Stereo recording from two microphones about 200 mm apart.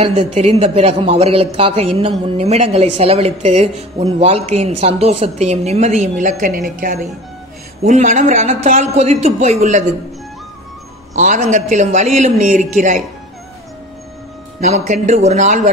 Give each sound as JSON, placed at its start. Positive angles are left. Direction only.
{"t": 0.0, "sound": "a woman's voice", "side_deg": -30}
{"t": 11.1, "sound": "a woman's voice", "side_deg": -40}
{"t": 14.6, "sound": "a woman's voice", "side_deg": -35}